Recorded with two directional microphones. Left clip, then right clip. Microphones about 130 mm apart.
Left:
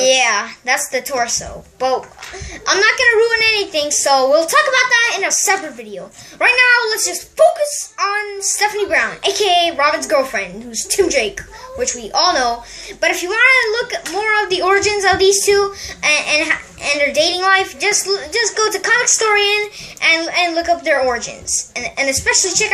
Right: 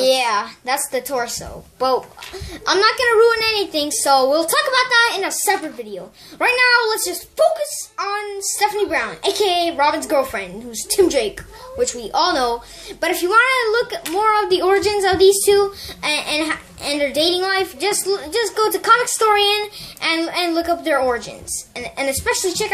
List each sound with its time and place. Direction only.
0.0 s speech: 20° right (ahead or behind)
2.6 s a woman's voice: 30° right (ahead or behind)
8.0 s a woman's voice: 20° right (ahead or behind)